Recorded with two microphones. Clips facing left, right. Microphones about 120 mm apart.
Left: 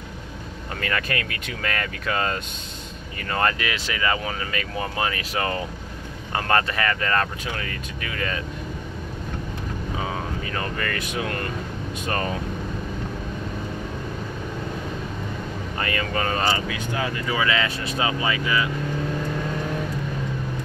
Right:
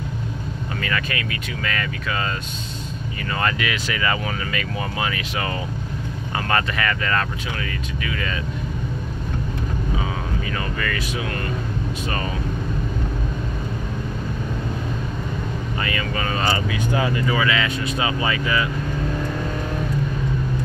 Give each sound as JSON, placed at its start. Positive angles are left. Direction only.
{"t": 0.7, "sound": "speech", "side_deg": 50}
{"t": 3.3, "sound": "speech", "side_deg": 35}
{"t": 10.5, "sound": "speech", "side_deg": 40}
{"t": 15.8, "sound": "speech", "side_deg": 45}
{"t": 16.7, "sound": "speech", "side_deg": -10}
{"t": 17.4, "sound": "speech", "side_deg": 30}
{"t": 18.2, "sound": "speech", "side_deg": 15}